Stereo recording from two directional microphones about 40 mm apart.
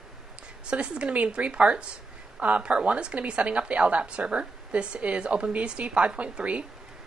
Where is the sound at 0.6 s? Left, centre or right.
Right.